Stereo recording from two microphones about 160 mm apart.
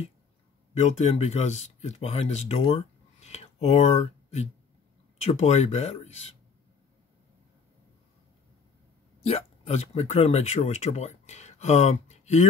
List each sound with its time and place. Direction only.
0.7 s speech: 45° left (ahead or behind)
3.2 s a sound: 45° left (ahead or behind)
5.2 s speech: 45° left (ahead or behind)
9.2 s speech: 40° left (ahead or behind)